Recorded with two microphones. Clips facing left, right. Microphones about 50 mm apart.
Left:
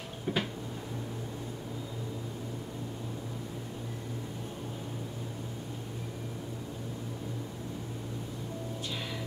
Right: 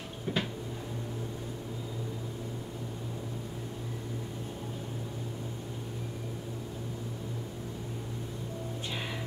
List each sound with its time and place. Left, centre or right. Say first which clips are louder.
0.3 s cupboard open or close: left 1 dB; centre